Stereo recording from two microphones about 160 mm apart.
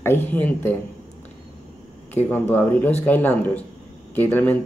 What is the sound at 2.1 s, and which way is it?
Speech, 10° left (ahead or behind).